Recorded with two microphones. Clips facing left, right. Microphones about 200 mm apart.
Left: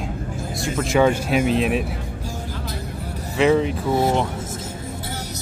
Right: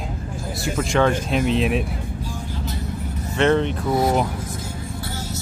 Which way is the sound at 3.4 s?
5° left (ahead or behind).